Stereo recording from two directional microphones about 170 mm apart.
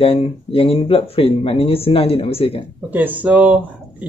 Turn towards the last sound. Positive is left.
turn(degrees=-10)  # may be behind; listen again after turning